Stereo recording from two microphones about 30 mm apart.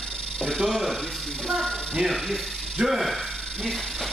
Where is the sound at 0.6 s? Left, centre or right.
Centre.